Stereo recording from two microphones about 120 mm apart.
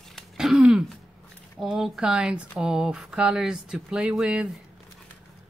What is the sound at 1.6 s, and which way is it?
Speech, centre (ahead or behind).